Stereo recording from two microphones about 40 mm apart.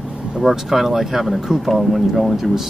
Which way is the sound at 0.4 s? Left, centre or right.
Centre.